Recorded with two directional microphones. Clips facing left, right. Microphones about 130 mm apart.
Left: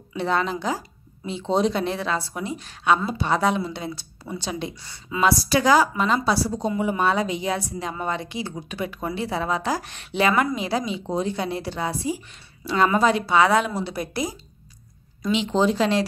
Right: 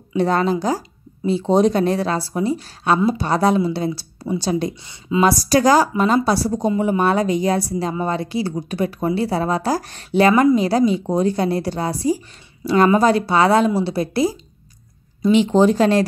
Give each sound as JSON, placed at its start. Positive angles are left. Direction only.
{"t": 0.2, "sound": "speech", "side_deg": -40}
{"t": 15.3, "sound": "speech", "side_deg": -50}